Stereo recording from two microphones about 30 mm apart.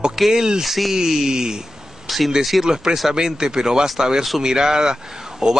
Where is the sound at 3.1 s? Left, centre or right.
Right.